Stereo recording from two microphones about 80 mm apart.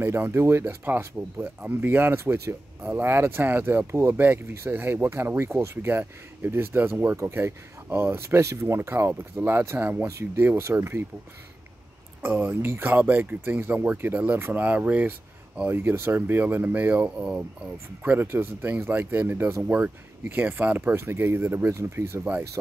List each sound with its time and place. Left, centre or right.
0.0 s speech: right
10.0 s speech: right
10.4 s speech: right
12.2 s speech: right
20.9 s speech: right